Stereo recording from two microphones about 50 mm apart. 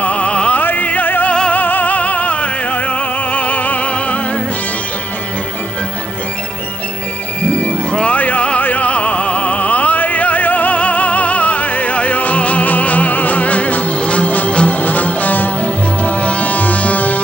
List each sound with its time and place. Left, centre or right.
0.0 s music: left
0.6 s music: left
7.4 s music: left
8.2 s opera: left
14.8 s music: left